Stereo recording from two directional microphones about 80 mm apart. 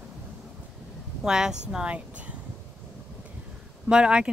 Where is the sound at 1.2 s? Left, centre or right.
Centre.